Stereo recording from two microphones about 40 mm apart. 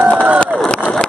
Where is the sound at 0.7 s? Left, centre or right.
Left.